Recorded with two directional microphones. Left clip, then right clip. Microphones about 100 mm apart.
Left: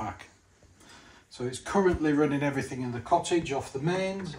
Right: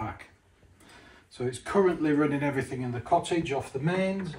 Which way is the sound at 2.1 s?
50° left (ahead or behind).